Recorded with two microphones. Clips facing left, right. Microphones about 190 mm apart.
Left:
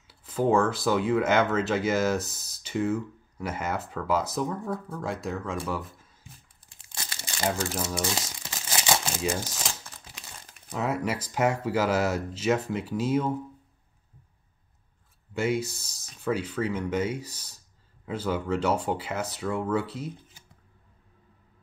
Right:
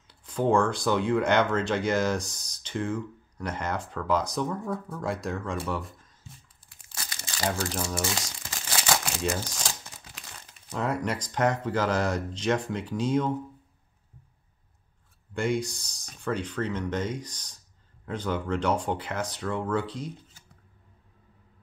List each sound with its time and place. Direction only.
0.1 s speech: 5° left (ahead or behind)
7.6 s speech: 5° left (ahead or behind)
8.7 s crumpling: 25° left (ahead or behind)
9.5 s crumpling: 5° left (ahead or behind)
10.7 s speech: 5° left (ahead or behind)
15.3 s speech: 5° left (ahead or behind)